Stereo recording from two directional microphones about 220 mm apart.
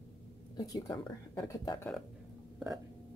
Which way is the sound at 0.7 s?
15° left (ahead or behind).